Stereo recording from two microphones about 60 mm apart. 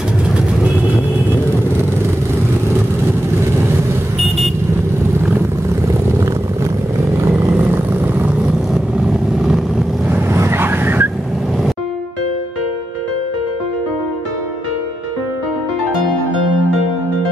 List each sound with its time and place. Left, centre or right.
7.2 s vehicle: right
7.5 s vehicle: right
10.3 s vehicle: right